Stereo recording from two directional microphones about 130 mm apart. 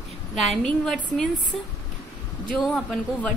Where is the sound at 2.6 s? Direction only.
10° left (ahead or behind).